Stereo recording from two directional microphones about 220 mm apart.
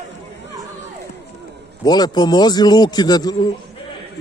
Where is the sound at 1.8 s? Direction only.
20° left (ahead or behind).